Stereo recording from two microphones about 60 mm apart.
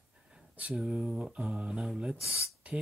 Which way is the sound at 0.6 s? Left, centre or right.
Centre.